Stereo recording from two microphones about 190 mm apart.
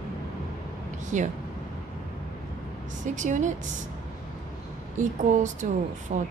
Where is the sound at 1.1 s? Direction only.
40° right (ahead or behind).